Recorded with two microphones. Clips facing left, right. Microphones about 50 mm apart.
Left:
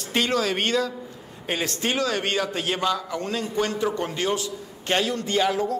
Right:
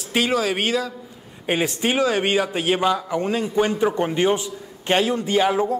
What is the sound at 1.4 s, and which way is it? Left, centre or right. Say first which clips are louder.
A man's voice: right 5 dB; centre.